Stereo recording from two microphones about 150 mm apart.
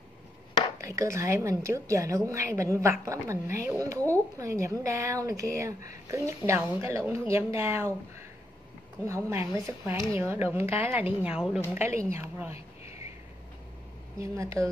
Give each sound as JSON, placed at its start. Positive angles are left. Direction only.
{"t": 0.7, "sound": "a woman's voice", "side_deg": -20}
{"t": 9.0, "sound": "speech", "side_deg": -15}
{"t": 12.0, "sound": "speech", "side_deg": -15}
{"t": 12.5, "sound": "a sound", "side_deg": 45}
{"t": 14.1, "sound": "a woman's voice", "side_deg": -20}